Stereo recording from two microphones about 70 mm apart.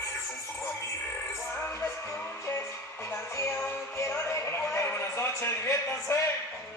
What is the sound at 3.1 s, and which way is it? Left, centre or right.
Music, left.